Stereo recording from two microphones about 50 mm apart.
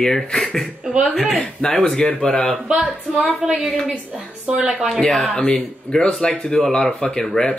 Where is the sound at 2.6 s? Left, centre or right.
Centre.